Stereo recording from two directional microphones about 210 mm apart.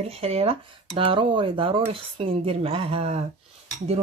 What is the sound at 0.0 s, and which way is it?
Speech, 30° right (ahead or behind).